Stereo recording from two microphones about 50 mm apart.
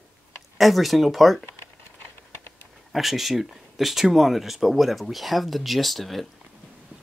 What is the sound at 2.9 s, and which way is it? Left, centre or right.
Speech, centre.